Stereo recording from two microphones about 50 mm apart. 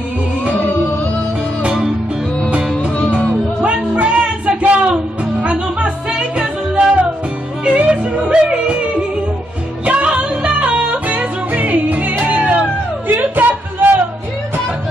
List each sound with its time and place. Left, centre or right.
3.1 s music: right
7.6 s yodeling: right
9.8 s music: right
13.1 s a sound: right